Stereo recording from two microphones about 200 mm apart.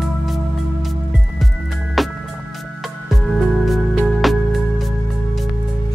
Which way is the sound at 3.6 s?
Centre (ahead or behind).